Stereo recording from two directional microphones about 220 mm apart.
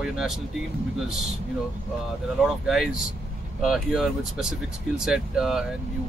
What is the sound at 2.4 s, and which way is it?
Speech, centre (ahead or behind).